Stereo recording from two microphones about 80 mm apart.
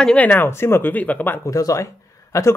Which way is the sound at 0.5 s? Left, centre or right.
Left.